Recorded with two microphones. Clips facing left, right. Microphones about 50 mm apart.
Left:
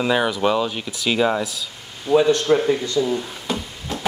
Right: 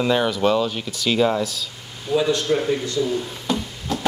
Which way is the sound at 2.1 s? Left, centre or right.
Left.